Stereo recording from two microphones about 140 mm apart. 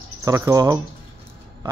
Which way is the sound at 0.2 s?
20° right (ahead or behind).